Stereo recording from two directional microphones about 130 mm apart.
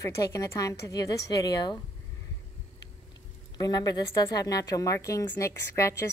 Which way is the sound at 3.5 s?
30° left (ahead or behind).